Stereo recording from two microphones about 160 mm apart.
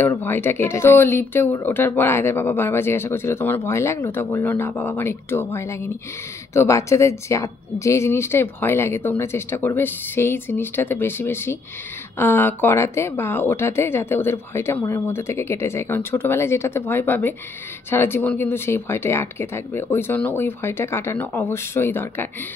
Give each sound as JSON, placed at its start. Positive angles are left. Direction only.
{"t": 0.0, "sound": "speech", "side_deg": 10}